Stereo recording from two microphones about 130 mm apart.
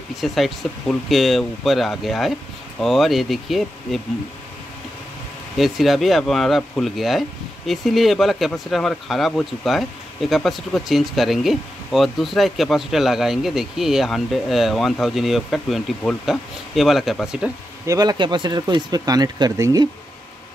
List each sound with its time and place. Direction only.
0.1 s speech: centre (ahead or behind)
5.6 s speech: centre (ahead or behind)
17.8 s speech: 30° right (ahead or behind)